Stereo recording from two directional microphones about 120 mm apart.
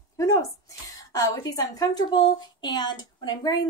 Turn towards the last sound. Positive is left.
turn(degrees=35)  # may be behind; listen again after turning